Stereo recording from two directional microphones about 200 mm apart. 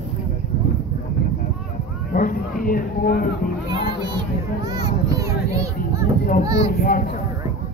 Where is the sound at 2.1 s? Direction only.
45° left (ahead or behind).